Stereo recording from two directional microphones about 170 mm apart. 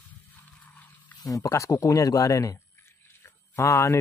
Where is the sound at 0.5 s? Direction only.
10° left (ahead or behind).